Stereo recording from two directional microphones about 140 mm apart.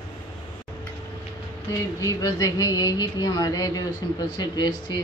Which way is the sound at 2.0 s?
25° left (ahead or behind).